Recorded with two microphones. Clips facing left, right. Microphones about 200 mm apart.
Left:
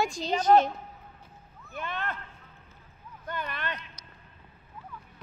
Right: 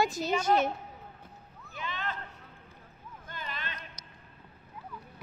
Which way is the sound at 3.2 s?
65° left (ahead or behind).